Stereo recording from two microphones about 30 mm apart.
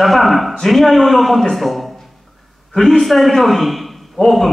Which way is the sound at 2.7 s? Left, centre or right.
Centre.